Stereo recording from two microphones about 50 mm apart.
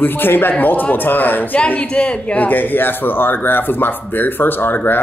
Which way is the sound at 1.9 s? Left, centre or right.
Centre.